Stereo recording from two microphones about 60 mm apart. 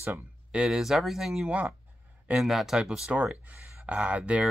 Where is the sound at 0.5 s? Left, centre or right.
Centre.